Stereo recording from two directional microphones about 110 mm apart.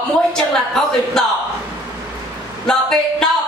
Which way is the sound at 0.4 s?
5° left (ahead or behind).